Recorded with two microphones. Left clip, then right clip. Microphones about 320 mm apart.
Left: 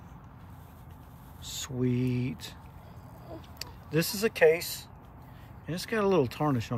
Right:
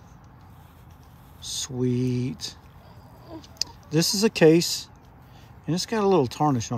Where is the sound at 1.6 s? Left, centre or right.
Centre.